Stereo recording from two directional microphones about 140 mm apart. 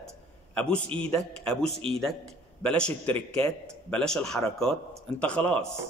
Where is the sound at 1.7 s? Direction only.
45° right (ahead or behind).